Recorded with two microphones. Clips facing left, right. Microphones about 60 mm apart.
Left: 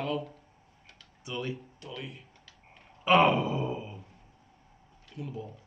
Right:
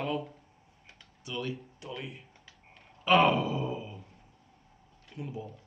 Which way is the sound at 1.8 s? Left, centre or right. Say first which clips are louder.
Right 1 dB; centre.